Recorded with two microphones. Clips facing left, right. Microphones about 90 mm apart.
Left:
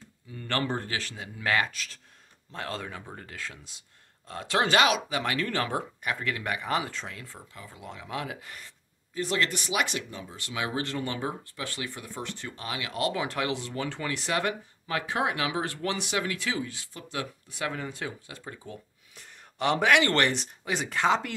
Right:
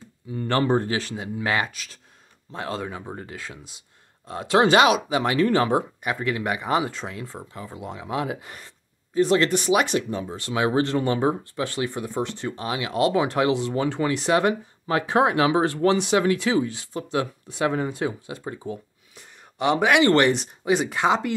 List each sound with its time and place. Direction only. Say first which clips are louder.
0.3 s speech: right 9 dB; 20° right (ahead or behind)
19.1 s speech: right 4 dB; 5° right (ahead or behind)